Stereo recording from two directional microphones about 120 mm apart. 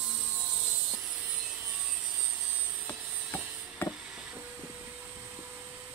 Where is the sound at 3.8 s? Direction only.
15° left (ahead or behind).